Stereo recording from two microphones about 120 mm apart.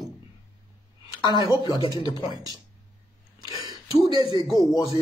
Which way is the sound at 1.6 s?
40° left (ahead or behind).